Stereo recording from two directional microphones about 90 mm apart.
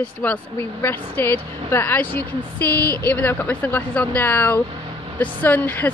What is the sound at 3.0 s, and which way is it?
A woman's voice, 20° left (ahead or behind).